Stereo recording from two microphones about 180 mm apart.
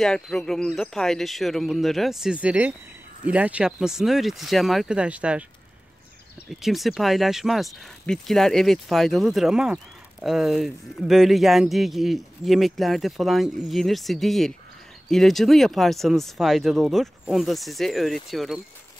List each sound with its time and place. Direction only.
0.0 s speech: 5° left (ahead or behind)
6.6 s speech: centre (ahead or behind)